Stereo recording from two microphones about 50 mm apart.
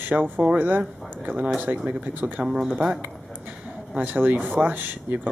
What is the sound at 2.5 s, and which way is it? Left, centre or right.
Speech, centre.